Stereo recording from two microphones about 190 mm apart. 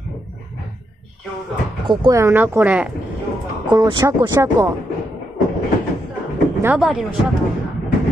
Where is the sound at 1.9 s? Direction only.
20° right (ahead or behind).